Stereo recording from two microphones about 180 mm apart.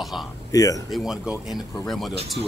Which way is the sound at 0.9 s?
Centre (ahead or behind).